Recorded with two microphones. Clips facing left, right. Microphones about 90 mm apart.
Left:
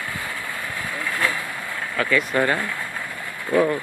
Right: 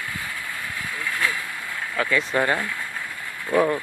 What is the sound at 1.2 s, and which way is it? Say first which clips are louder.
Vehicle: left 2 dB; 35° left (ahead or behind).